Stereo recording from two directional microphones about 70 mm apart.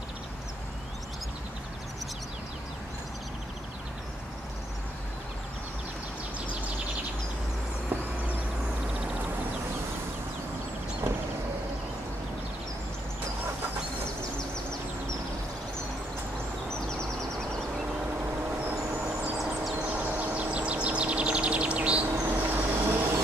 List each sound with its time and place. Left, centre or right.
19.8 s bird: right
22.2 s vehicle: right